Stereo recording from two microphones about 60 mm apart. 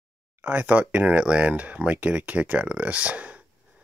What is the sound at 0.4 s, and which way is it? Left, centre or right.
Speech, right.